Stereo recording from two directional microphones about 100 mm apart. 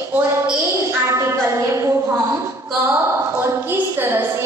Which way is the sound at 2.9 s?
25° right (ahead or behind).